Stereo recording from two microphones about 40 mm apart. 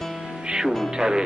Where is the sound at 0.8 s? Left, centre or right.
Centre.